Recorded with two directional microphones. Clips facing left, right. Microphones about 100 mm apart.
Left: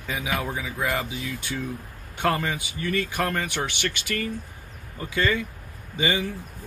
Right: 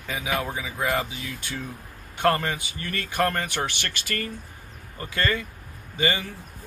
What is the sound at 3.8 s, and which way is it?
Speech, 15° left (ahead or behind).